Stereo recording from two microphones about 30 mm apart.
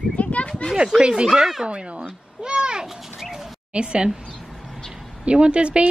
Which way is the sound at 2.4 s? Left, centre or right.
Right.